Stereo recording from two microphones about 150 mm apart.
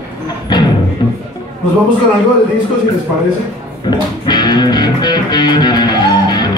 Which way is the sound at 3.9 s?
30° left (ahead or behind).